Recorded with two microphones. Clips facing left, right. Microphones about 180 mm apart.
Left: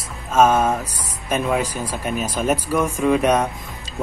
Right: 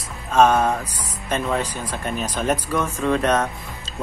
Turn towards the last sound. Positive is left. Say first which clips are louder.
# left 3 dB
turn(degrees=10)  # may be behind; listen again after turning